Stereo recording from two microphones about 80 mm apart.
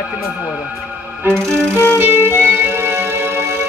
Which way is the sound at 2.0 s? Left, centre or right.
Right.